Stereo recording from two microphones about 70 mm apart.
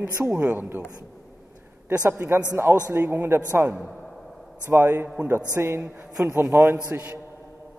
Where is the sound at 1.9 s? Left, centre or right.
Right.